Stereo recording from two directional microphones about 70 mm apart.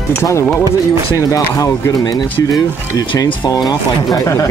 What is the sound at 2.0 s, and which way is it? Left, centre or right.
Speech, left.